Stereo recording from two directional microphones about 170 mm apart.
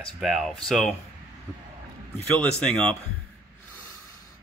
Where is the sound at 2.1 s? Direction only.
10° left (ahead or behind).